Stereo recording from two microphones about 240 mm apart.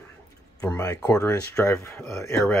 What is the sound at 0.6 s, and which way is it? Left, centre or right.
Speech, centre.